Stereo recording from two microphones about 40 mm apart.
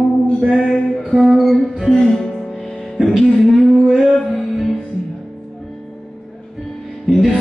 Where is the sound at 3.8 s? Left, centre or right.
Centre.